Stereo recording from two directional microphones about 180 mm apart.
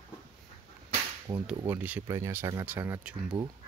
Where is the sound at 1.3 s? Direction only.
20° right (ahead or behind).